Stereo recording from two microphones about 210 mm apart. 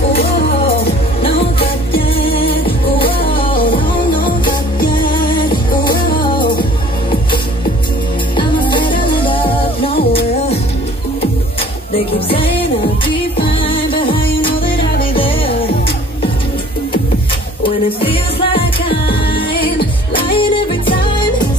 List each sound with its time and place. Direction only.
1.9 s music: 25° left (ahead or behind)
8.4 s music: 20° left (ahead or behind)
13.0 s music: 25° left (ahead or behind)
17.6 s music: 25° left (ahead or behind)